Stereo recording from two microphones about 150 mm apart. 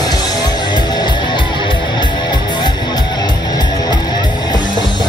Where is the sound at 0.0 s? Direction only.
25° left (ahead or behind).